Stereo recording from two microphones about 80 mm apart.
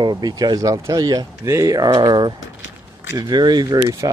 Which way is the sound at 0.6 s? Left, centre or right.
Right.